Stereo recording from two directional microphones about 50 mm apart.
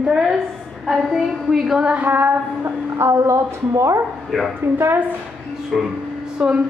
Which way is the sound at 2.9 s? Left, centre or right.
Right.